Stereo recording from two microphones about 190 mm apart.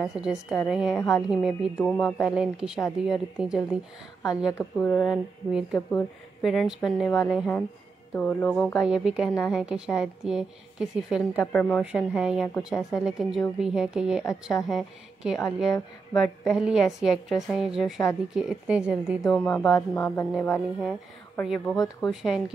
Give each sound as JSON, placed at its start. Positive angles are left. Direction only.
{"t": 0.0, "sound": "a woman's voice", "side_deg": -5}
{"t": 4.6, "sound": "speech", "side_deg": 10}
{"t": 5.0, "sound": "a woman's voice", "side_deg": -5}
{"t": 8.1, "sound": "speech", "side_deg": 10}
{"t": 8.8, "sound": "a woman's voice", "side_deg": -5}
{"t": 11.3, "sound": "speech", "side_deg": 5}
{"t": 11.8, "sound": "a woman's voice", "side_deg": -5}
{"t": 19.3, "sound": "a woman's voice", "side_deg": 5}
{"t": 21.4, "sound": "a woman's voice", "side_deg": 0}